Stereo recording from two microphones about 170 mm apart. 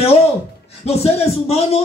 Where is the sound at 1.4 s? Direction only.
35° left (ahead or behind).